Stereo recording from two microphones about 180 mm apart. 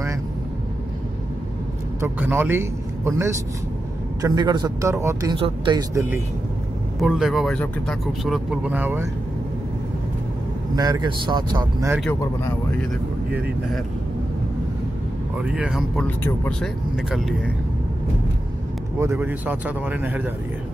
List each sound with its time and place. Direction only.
2.0 s a man's voice: 10° right (ahead or behind)
7.0 s speech: centre (ahead or behind)
10.8 s a man's voice: 20° right (ahead or behind)
15.4 s speech: 5° right (ahead or behind)
16.0 s speech: 5° left (ahead or behind)
18.9 s speech: 15° right (ahead or behind)